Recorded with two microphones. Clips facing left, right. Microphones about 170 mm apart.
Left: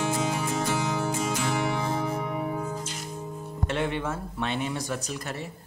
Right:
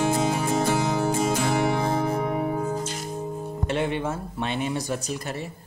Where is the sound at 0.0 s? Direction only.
35° right (ahead or behind).